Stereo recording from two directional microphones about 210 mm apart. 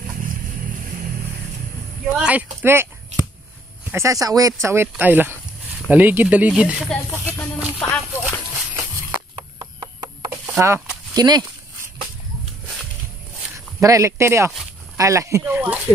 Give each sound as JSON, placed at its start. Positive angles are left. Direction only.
{"t": 2.1, "sound": "speech", "side_deg": -5}
{"t": 3.9, "sound": "speech", "side_deg": -15}
{"t": 7.5, "sound": "music", "side_deg": -5}
{"t": 9.3, "sound": "a sound", "side_deg": -20}
{"t": 10.6, "sound": "speech", "side_deg": -15}
{"t": 13.7, "sound": "speech", "side_deg": -15}